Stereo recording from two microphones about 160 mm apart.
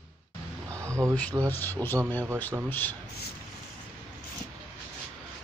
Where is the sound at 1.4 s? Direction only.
10° left (ahead or behind).